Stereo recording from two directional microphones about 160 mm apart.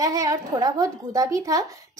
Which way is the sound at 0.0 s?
20° right (ahead or behind).